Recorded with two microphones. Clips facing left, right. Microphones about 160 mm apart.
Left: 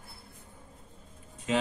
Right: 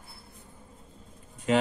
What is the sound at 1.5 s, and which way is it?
Speech, 65° right (ahead or behind).